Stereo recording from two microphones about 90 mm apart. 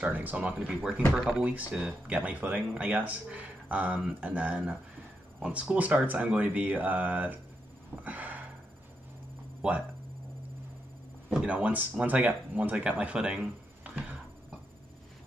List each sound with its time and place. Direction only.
0.0 s speech: 20° right (ahead or behind)
1.1 s speech: 5° right (ahead or behind)
1.4 s speech: 15° right (ahead or behind)
8.0 s gasp: 15° right (ahead or behind)
9.6 s speech: 15° right (ahead or behind)
11.2 s speech: 10° right (ahead or behind)